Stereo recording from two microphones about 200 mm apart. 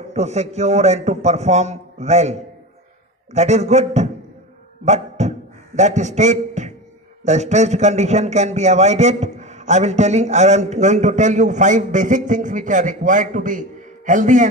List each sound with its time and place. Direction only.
0.1 s a man's voice: 35° right (ahead or behind)
3.3 s a man's voice: 35° right (ahead or behind)
4.8 s a sound: 35° right (ahead or behind)
5.8 s a man's voice: 35° right (ahead or behind)